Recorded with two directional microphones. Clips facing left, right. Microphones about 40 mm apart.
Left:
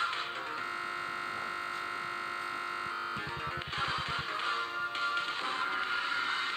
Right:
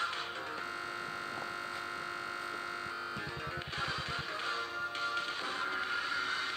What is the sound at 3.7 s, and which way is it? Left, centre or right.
Music, left.